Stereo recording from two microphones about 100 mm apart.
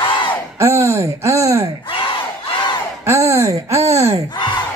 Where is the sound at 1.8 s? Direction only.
60° left (ahead or behind).